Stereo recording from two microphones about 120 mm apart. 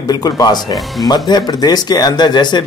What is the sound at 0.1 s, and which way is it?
Speech, 30° left (ahead or behind).